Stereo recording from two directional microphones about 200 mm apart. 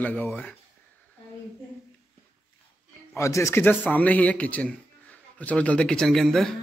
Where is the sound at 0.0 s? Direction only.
10° left (ahead or behind).